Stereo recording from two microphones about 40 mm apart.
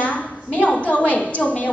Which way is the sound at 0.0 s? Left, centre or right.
Left.